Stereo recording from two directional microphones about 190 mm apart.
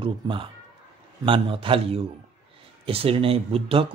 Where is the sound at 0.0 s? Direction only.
25° right (ahead or behind).